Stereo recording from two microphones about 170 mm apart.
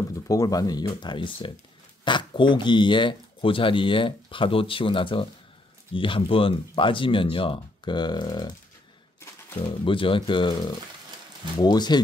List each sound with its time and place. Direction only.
0.3 s speech: 20° left (ahead or behind)
9.6 s speech: 30° left (ahead or behind)
11.6 s speech: 25° left (ahead or behind)